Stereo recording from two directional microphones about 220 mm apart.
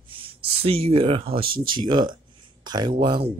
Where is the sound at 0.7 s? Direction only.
25° right (ahead or behind).